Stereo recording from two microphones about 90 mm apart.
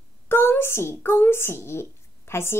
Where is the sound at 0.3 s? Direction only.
25° left (ahead or behind).